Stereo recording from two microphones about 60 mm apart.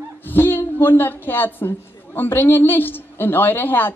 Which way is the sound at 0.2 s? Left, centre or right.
Left.